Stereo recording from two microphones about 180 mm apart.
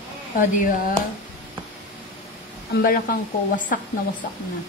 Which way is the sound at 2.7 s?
55° left (ahead or behind).